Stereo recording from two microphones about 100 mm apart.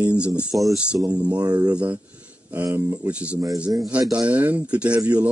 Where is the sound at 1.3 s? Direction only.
40° right (ahead or behind).